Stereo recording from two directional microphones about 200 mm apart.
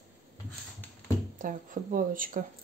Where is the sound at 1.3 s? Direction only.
40° right (ahead or behind).